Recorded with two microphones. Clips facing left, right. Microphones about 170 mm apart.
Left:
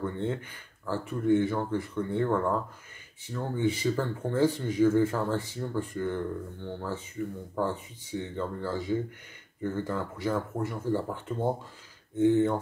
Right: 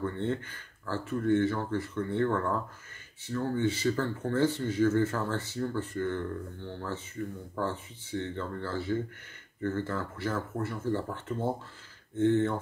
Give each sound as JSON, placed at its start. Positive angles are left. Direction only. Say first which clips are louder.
{"t": 0.0, "sound": "speech", "louder": "even", "side_deg": 10}